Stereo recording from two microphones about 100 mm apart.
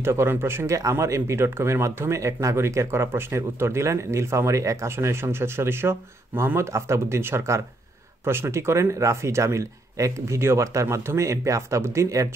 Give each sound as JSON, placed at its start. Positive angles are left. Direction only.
{"t": 0.0, "sound": "speech", "side_deg": -25}